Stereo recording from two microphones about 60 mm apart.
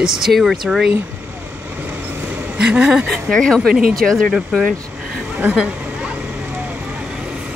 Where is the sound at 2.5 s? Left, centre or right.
Right.